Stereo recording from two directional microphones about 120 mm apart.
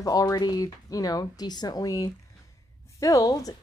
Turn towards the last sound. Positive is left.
turn(degrees=30)  # may be behind; listen again after turning